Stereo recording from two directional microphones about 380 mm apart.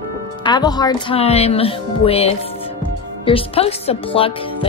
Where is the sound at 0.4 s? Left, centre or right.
Centre.